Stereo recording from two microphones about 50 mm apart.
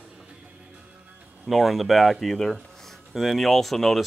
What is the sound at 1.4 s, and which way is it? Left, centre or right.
Speech, centre.